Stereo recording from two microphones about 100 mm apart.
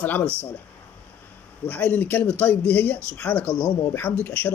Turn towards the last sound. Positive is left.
turn(degrees=20)  # may be behind; listen again after turning